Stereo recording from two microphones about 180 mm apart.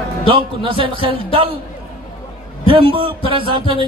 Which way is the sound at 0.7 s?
30° right (ahead or behind).